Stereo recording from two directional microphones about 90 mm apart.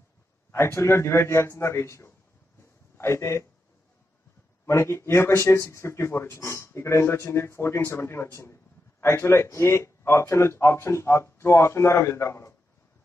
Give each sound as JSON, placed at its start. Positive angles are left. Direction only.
{"t": 0.7, "sound": "speech", "side_deg": 30}
{"t": 4.6, "sound": "speech", "side_deg": 30}